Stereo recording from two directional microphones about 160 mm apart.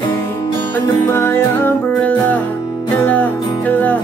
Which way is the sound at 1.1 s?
15° left (ahead or behind).